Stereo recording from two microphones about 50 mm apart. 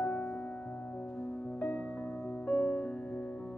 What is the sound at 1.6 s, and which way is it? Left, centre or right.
Music, left.